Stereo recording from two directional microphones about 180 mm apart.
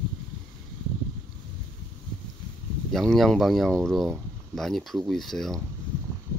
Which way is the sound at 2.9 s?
Centre (ahead or behind).